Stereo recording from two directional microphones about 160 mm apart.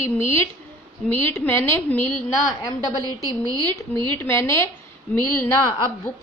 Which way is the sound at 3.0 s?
25° right (ahead or behind).